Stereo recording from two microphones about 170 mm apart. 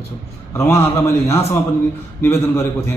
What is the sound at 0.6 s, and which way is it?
A man's voice, 15° left (ahead or behind).